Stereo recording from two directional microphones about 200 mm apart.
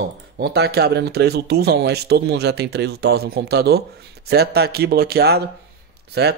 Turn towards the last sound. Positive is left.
turn(degrees=-55)  # may be behind; listen again after turning